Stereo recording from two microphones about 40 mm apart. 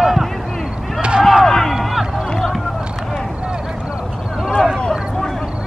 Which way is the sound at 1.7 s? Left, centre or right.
Centre.